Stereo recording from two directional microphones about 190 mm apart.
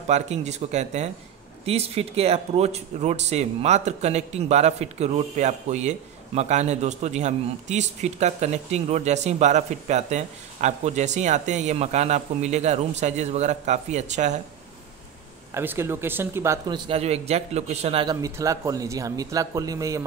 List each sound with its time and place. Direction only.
0.1 s speech: 35° right (ahead or behind)
15.5 s speech: 10° right (ahead or behind)
16.6 s speech: 25° right (ahead or behind)
18.2 s speech: 15° right (ahead or behind)